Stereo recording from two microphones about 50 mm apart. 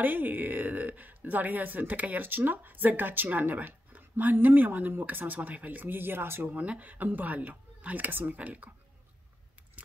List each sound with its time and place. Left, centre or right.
0.0 s speech: right
6.5 s speech: right